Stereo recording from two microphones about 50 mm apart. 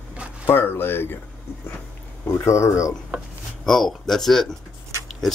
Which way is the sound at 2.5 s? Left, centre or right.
Left.